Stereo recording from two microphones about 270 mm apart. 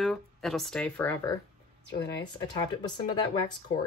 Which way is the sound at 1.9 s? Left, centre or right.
Centre.